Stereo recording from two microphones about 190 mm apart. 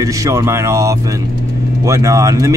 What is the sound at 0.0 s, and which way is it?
A man's voice, 15° right (ahead or behind).